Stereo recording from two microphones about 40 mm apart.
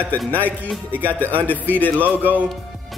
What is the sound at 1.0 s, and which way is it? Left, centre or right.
Speech, left.